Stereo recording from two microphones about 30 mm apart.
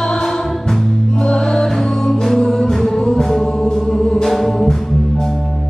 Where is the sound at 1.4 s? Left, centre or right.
Centre.